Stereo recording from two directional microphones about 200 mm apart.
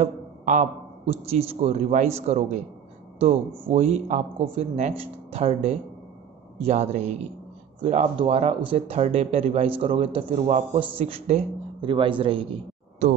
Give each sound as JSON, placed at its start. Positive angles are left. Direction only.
{"t": 0.0, "sound": "a man's voice", "side_deg": -35}
{"t": 3.7, "sound": "a man's voice", "side_deg": -35}